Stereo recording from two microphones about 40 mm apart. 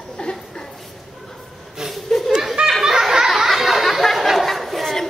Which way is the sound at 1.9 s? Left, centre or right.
Centre.